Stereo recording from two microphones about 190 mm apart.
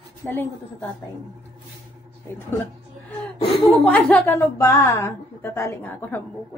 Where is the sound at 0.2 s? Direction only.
10° left (ahead or behind).